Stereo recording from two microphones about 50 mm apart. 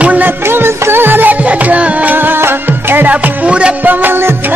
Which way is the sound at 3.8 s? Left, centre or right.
Right.